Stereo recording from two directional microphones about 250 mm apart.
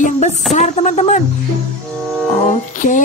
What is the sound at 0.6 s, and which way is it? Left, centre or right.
Speech, left.